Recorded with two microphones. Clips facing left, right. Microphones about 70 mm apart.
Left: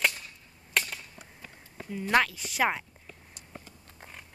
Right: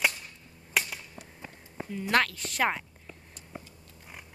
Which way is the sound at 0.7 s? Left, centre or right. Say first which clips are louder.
Even; centre.